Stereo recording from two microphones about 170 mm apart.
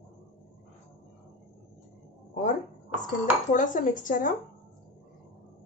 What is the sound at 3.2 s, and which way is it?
A woman's voice, 50° left (ahead or behind).